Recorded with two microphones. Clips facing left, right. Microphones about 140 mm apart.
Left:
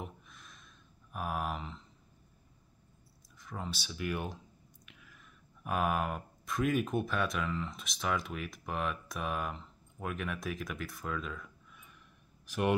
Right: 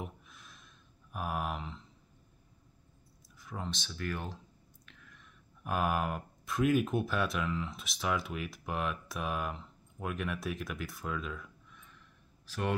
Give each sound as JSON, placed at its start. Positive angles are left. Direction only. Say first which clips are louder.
{"t": 0.0, "sound": "a sound", "louder": "right 1 dB", "side_deg": 0}
{"t": 3.3, "sound": "speech", "louder": "right 1 dB", "side_deg": 0}
{"t": 12.4, "sound": "speech", "louder": "left 4 dB", "side_deg": 15}